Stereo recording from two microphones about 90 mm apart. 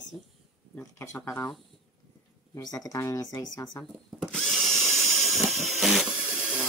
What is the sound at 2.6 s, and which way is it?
Speech, 45° left (ahead or behind).